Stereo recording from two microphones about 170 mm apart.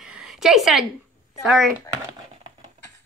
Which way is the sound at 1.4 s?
Centre (ahead or behind).